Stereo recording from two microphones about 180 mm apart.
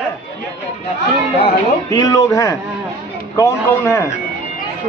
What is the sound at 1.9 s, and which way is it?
A man's voice, 20° left (ahead or behind).